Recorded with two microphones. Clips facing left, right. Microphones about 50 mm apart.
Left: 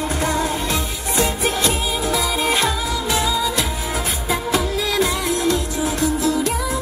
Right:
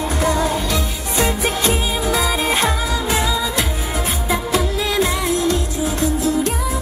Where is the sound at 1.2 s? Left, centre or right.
Right.